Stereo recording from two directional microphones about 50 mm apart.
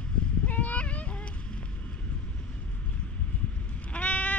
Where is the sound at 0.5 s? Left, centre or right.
Left.